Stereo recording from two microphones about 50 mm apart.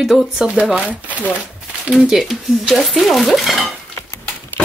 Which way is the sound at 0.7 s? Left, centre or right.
Right.